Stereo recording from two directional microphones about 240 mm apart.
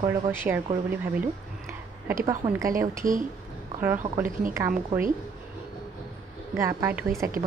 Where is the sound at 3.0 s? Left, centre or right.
Right.